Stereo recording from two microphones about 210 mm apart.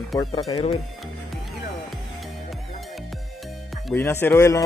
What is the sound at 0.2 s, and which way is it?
Speech, 20° left (ahead or behind).